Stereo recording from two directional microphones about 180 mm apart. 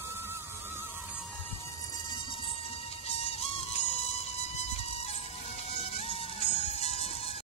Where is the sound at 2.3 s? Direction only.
30° left (ahead or behind).